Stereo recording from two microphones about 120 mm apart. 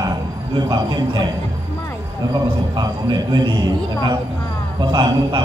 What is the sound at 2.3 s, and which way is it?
A man's voice, 35° right (ahead or behind).